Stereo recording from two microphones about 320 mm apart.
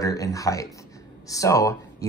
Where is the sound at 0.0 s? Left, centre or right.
Centre.